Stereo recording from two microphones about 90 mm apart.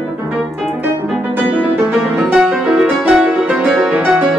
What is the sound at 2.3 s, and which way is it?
Music, 5° right (ahead or behind).